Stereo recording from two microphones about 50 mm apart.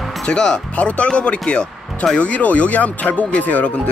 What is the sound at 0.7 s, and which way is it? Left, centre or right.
Speech, left.